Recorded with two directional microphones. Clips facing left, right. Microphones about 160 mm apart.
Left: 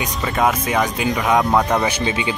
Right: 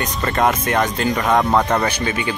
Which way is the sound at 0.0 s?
5° left (ahead or behind).